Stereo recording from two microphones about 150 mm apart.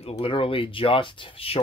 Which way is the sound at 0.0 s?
35° left (ahead or behind).